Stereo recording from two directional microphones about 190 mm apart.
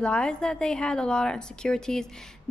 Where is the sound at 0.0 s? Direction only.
5° left (ahead or behind).